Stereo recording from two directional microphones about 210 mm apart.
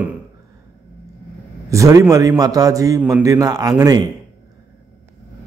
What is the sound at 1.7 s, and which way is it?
A man's voice, 15° right (ahead or behind).